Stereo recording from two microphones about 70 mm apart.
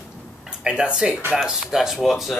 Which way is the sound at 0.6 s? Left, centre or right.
Centre.